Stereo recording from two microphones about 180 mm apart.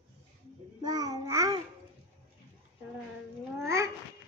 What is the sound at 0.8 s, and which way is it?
Babbling, 20° right (ahead or behind).